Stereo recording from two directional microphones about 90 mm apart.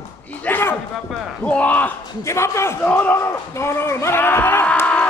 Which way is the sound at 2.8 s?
20° left (ahead or behind).